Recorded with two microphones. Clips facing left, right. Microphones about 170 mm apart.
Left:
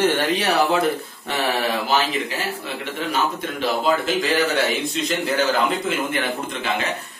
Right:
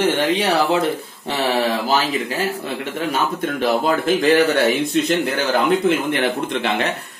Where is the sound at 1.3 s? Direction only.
35° right (ahead or behind).